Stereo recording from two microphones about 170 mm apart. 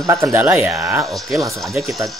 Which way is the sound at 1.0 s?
Centre (ahead or behind).